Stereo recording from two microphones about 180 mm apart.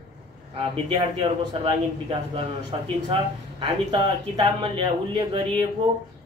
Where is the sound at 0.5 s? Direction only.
25° right (ahead or behind).